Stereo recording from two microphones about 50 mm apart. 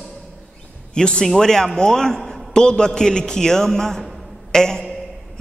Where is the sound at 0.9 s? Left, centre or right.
Centre.